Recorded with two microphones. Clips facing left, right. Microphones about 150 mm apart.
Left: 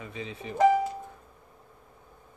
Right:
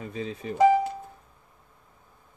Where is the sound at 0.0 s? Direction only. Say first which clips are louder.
Right 4 dB; 40° right (ahead or behind).